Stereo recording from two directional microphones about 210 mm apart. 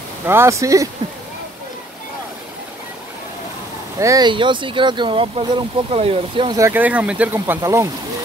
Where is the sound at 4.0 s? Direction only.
15° right (ahead or behind).